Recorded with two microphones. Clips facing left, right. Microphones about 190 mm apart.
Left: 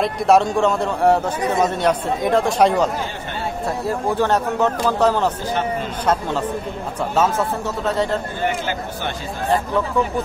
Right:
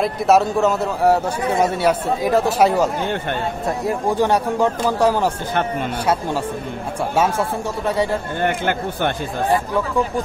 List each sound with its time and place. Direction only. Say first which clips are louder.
0.0 s a man's voice: even; centre (ahead or behind)
5.5 s a man's voice: right 1 dB; 55° right (ahead or behind)
7.0 s speech: even; 10° right (ahead or behind)
8.4 s a man's voice: right 2 dB; 55° right (ahead or behind)
9.5 s speech: left 1 dB; 10° right (ahead or behind)